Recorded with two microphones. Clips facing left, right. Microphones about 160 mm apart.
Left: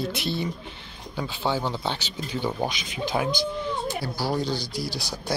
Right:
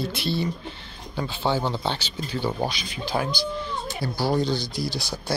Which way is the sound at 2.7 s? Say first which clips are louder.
Left 1 dB; 15° left (ahead or behind).